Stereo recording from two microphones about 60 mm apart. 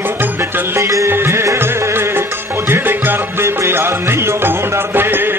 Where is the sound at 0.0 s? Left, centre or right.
Right.